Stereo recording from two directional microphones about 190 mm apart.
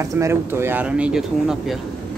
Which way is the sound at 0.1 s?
15° right (ahead or behind).